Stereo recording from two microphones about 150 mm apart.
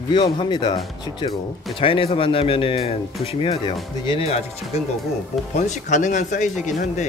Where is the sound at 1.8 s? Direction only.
40° left (ahead or behind).